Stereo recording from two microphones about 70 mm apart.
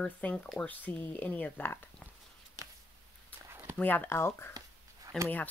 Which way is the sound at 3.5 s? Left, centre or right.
Right.